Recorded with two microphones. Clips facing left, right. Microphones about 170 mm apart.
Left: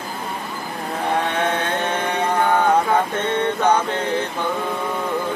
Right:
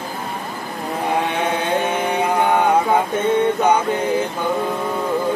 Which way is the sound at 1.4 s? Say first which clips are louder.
Right 2 dB; 10° right (ahead or behind).